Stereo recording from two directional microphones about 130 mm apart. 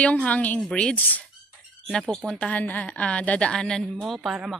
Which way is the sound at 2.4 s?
10° left (ahead or behind).